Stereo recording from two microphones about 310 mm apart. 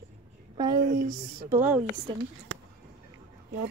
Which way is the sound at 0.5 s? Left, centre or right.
Centre.